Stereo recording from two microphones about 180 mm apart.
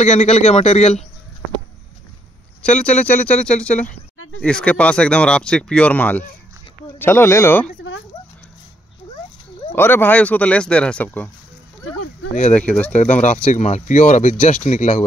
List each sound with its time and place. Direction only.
0.0 s speech: 40° left (ahead or behind)
2.8 s speech: 5° left (ahead or behind)
9.8 s speech: 10° left (ahead or behind)
12.5 s speech: 10° left (ahead or behind)
12.9 s speech: 40° left (ahead or behind)